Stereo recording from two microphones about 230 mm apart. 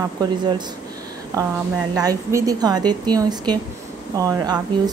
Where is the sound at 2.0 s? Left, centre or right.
Centre.